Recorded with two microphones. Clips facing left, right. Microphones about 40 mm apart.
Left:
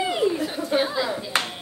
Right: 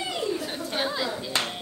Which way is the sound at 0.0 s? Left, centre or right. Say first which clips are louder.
Left 6 dB; left.